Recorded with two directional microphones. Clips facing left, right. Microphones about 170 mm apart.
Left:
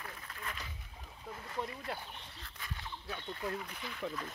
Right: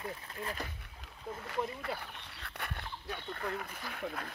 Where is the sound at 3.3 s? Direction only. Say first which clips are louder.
Even; 60° right (ahead or behind).